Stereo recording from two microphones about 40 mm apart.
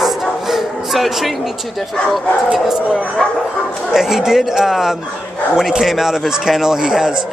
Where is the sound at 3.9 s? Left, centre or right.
Centre.